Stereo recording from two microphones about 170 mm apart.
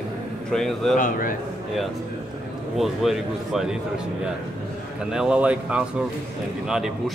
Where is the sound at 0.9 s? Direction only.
55° left (ahead or behind).